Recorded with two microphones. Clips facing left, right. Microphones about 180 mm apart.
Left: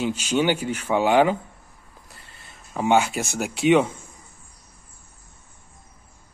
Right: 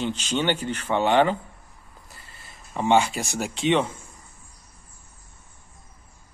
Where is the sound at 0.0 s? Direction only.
10° left (ahead or behind).